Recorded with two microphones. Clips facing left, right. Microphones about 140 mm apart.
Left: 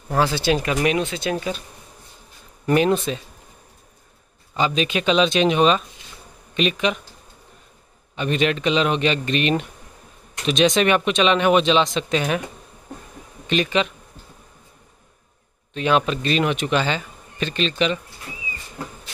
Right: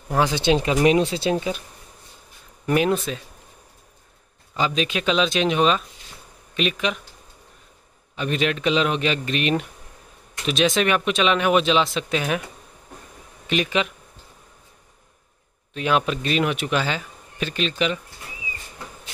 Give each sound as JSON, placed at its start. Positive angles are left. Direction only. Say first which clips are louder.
{"t": 0.2, "sound": "speech", "louder": "even", "side_deg": -20}
{"t": 1.3, "sound": "speech", "louder": "right 2 dB", "side_deg": -15}
{"t": 2.6, "sound": "speech", "louder": "left 2 dB", "side_deg": -5}
{"t": 4.6, "sound": "speech", "louder": "left 2 dB", "side_deg": 0}
{"t": 8.2, "sound": "speech", "louder": "left 2 dB", "side_deg": 0}
{"t": 13.5, "sound": "speech", "louder": "left 2 dB", "side_deg": -10}
{"t": 15.7, "sound": "speech", "louder": "left 2 dB", "side_deg": -5}